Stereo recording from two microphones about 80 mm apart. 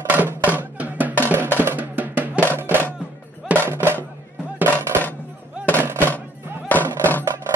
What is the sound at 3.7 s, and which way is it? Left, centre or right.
Music, right.